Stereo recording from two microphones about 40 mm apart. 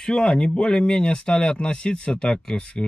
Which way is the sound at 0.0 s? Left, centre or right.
Left.